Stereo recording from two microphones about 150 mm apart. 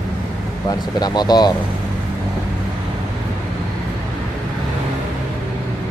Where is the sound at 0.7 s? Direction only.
25° left (ahead or behind).